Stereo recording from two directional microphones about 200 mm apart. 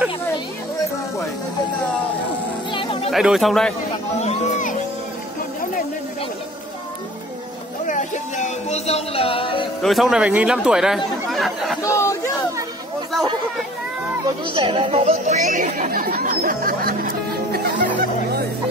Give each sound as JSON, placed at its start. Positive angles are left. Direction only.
{"t": 2.7, "sound": "music", "side_deg": 25}
{"t": 3.1, "sound": "speech", "side_deg": 0}
{"t": 4.2, "sound": "music", "side_deg": 35}
{"t": 7.8, "sound": "music", "side_deg": 40}
{"t": 9.8, "sound": "speech", "side_deg": 0}
{"t": 11.2, "sound": "chatter", "side_deg": 0}
{"t": 11.8, "sound": "chatter", "side_deg": 15}
{"t": 14.5, "sound": "speech", "side_deg": -25}